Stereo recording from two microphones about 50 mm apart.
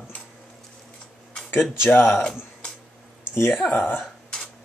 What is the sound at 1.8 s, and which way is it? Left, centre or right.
Speech, left.